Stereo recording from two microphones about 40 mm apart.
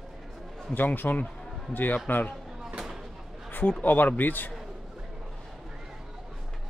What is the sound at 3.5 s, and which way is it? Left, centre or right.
A man's voice, left.